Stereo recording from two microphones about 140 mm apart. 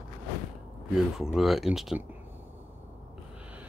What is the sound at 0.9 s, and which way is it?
Speech, 5° right (ahead or behind).